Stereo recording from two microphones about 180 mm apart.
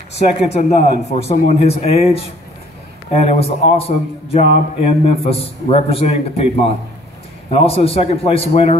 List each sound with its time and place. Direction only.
0.5 s a man's voice: 40° left (ahead or behind)